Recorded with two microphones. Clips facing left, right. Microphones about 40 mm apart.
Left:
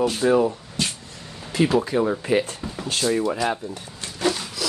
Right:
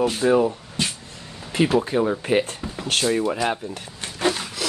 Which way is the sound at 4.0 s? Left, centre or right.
Right.